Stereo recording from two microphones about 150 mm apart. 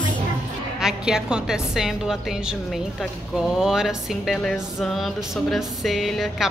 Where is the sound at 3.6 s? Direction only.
Centre (ahead or behind).